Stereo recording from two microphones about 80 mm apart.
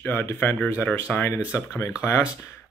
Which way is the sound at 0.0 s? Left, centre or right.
Left.